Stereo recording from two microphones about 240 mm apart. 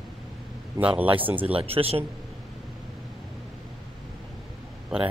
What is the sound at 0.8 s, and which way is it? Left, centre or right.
Speech, centre.